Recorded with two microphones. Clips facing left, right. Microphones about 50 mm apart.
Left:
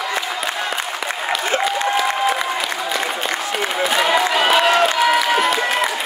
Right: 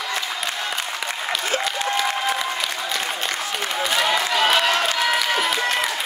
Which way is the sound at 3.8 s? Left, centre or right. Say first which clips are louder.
Left 4 dB; centre.